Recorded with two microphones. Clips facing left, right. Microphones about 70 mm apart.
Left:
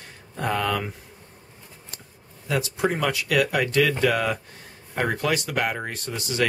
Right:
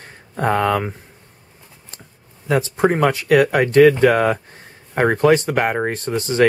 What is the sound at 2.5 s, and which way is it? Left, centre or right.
Speech, right.